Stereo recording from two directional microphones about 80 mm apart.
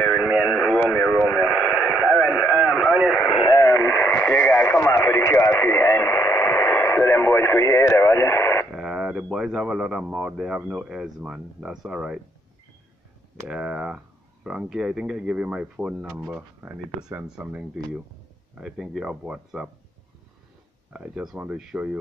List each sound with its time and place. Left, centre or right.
0.1 s radio: centre
3.1 s radio: centre
3.5 s radio: left
8.7 s speech: centre
13.5 s speech: centre
18.5 s speech: centre
20.9 s speech: centre